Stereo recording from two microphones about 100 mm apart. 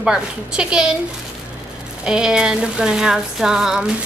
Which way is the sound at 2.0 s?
5° right (ahead or behind).